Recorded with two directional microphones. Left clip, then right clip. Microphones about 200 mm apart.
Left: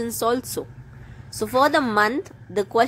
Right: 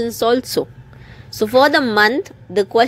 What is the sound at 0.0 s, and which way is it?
A woman's voice, 5° right (ahead or behind).